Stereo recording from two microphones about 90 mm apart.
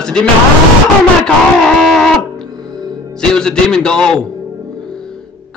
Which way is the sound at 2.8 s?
45° right (ahead or behind).